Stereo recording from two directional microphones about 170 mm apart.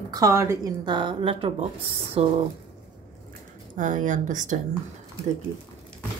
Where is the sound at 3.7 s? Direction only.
50° right (ahead or behind).